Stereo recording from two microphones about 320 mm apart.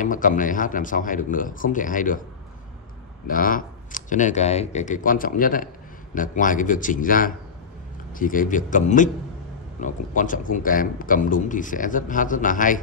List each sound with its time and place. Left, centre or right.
0.0 s speech: left
3.3 s speech: left